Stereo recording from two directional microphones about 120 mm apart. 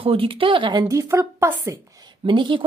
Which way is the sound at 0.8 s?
25° right (ahead or behind).